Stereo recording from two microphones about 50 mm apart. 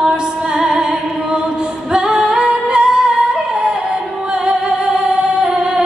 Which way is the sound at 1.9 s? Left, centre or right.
Centre.